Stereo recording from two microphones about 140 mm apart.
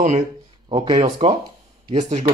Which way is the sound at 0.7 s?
40° right (ahead or behind).